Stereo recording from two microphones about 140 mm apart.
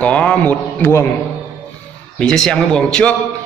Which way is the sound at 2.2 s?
5° left (ahead or behind).